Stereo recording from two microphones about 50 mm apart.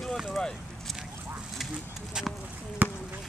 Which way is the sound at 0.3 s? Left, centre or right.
Centre.